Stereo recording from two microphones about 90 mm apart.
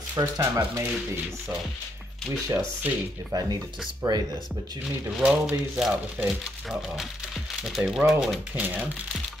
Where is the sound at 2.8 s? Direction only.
15° right (ahead or behind).